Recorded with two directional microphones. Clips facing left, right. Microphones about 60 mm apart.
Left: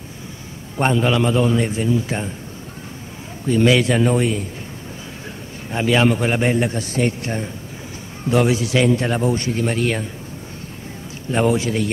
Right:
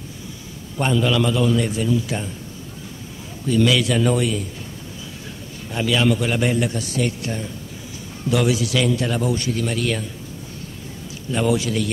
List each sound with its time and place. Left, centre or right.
0.7 s a man's voice: left
3.4 s a man's voice: left
5.7 s a man's voice: left
11.2 s a man's voice: left